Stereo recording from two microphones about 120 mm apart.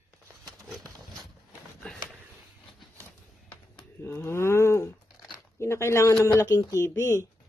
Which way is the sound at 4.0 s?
20° left (ahead or behind).